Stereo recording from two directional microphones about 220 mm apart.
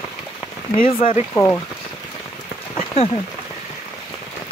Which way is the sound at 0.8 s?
30° left (ahead or behind).